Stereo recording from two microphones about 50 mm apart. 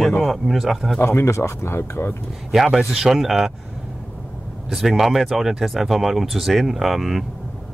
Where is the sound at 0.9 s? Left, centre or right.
Left.